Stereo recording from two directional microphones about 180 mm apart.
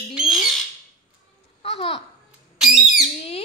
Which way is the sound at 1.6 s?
30° left (ahead or behind).